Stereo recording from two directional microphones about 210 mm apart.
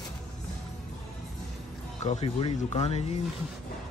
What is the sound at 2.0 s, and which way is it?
Speech, 30° left (ahead or behind).